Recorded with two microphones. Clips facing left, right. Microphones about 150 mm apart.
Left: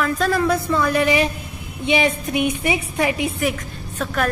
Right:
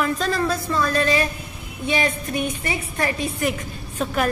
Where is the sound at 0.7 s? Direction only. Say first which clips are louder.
Left 3 dB; 15° left (ahead or behind).